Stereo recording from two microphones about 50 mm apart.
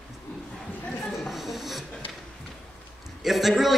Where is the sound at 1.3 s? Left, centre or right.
Centre.